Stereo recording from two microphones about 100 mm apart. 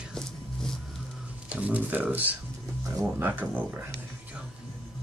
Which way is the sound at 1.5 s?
15° right (ahead or behind).